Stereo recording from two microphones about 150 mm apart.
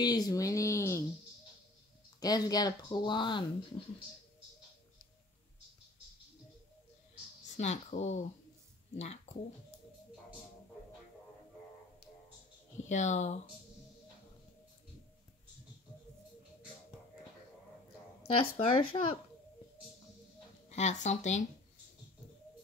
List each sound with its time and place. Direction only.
0.0 s speech: 25° left (ahead or behind)
2.1 s speech: 25° left (ahead or behind)
7.5 s speech: 50° left (ahead or behind)
12.8 s speech: 55° left (ahead or behind)
18.2 s speech: 40° left (ahead or behind)
20.7 s speech: 50° left (ahead or behind)